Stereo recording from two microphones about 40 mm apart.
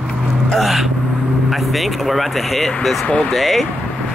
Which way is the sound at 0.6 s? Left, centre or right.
Centre.